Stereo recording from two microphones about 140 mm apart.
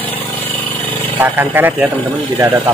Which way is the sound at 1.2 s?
15° right (ahead or behind).